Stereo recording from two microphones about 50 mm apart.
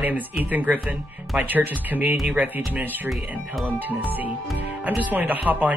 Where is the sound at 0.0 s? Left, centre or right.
Right.